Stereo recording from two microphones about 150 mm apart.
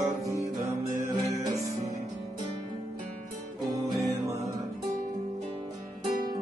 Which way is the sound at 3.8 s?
20° right (ahead or behind).